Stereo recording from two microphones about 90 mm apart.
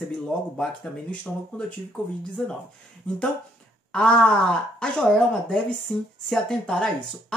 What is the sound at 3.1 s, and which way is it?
Speech, 15° left (ahead or behind).